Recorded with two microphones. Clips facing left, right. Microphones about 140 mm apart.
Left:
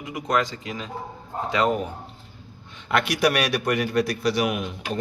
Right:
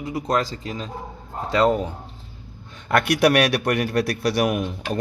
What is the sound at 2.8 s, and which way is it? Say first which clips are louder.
A man's voice: right 4 dB; 50° right (ahead or behind).